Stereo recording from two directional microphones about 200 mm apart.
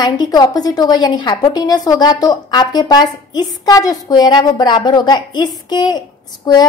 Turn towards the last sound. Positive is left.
turn(degrees=20)  # may be behind; listen again after turning